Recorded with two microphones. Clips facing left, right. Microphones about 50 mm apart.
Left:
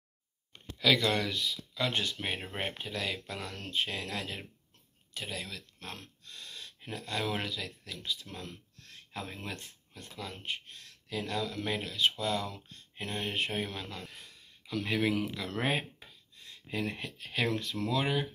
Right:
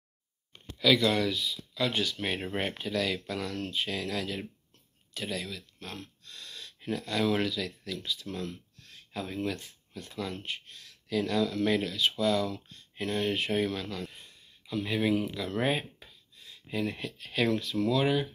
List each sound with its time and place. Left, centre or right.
0.5 s a sound: left
1.4 s speech: left
1.8 s speech: left
2.6 s speech: left
3.6 s speech: left
5.1 s speech: left
5.5 s speech: left
6.2 s a sound: left
6.9 s speech: left
9.1 s speech: left
10.1 s speech: centre
10.4 s speech: left
14.7 s speech: left